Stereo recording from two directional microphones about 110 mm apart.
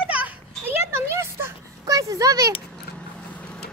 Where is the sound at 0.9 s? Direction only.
25° right (ahead or behind).